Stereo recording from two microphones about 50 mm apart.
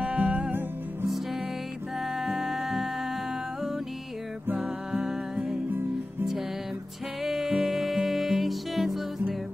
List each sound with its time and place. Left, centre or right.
0.0 s music: right
2.0 s music: centre
4.6 s music: centre
7.2 s music: centre